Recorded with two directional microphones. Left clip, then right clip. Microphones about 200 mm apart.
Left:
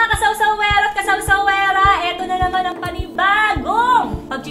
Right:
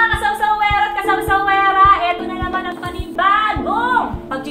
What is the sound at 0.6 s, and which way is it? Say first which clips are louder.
Music: even; 45° left (ahead or behind).